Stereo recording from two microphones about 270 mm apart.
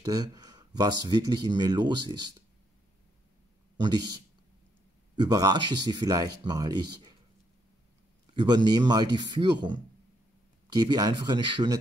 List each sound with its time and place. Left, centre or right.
0.0 s speech: centre
3.7 s speech: centre
5.2 s speech: centre
8.4 s speech: centre